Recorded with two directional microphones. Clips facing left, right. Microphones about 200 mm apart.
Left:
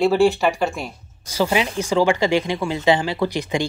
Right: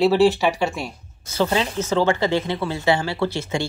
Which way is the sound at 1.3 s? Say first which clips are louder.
Left 1 dB; 10° left (ahead or behind).